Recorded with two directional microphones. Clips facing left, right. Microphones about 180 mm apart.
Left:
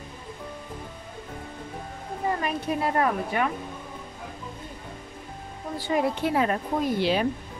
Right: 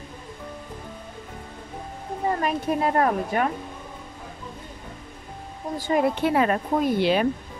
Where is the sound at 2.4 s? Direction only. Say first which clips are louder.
Right 3 dB; 45° right (ahead or behind).